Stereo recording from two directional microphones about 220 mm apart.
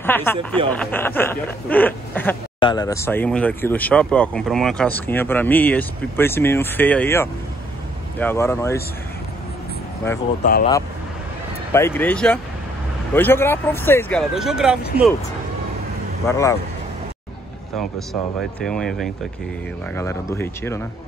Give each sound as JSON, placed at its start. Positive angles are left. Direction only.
{"t": 0.0, "sound": "speech", "side_deg": 10}
{"t": 10.4, "sound": "speech", "side_deg": 40}
{"t": 11.7, "sound": "speech", "side_deg": 10}
{"t": 14.3, "sound": "speech", "side_deg": 0}
{"t": 16.3, "sound": "speech", "side_deg": 15}
{"t": 17.7, "sound": "speech", "side_deg": 0}